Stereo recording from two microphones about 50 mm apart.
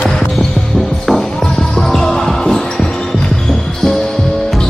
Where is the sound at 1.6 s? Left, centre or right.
Centre.